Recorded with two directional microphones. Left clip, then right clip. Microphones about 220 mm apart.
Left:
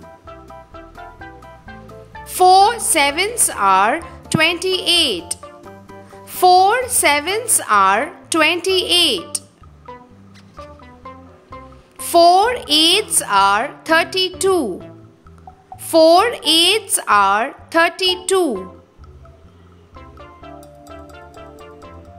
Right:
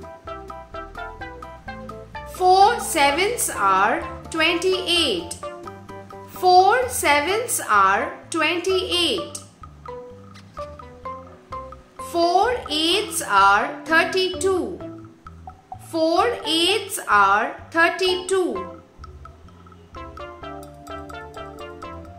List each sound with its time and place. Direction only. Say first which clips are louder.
0.0 s music: right 3 dB; centre (ahead or behind)
2.3 s a woman's voice: left 4 dB; 45° left (ahead or behind)
5.6 s music: right 1 dB; centre (ahead or behind)
6.4 s a woman's voice: left 3 dB; 45° left (ahead or behind)
10.6 s music: right 3 dB; centre (ahead or behind)
12.1 s a woman's voice: left 8 dB; 45° left (ahead or behind)
15.9 s a woman's voice: left 9 dB; 45° left (ahead or behind)
20.0 s music: right 4 dB; centre (ahead or behind)